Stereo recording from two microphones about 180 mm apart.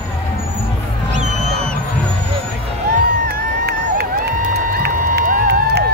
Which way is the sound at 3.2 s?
65° right (ahead or behind).